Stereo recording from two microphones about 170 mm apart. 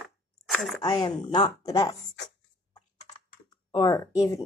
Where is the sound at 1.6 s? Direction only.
20° left (ahead or behind).